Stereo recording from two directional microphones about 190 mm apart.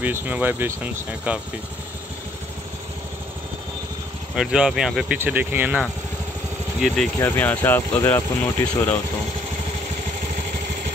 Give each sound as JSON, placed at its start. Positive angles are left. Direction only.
{"t": 0.0, "sound": "speech", "side_deg": -10}
{"t": 4.4, "sound": "speech", "side_deg": -5}
{"t": 7.2, "sound": "speech", "side_deg": 10}